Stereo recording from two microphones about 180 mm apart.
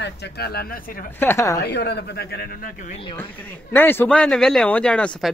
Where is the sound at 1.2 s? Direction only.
15° left (ahead or behind).